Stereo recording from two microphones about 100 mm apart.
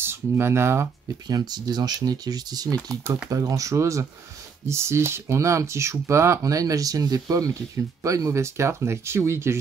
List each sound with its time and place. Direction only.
0.0 s speech: 25° right (ahead or behind)
1.3 s speech: 45° right (ahead or behind); by 9.6 s 25° right (ahead or behind)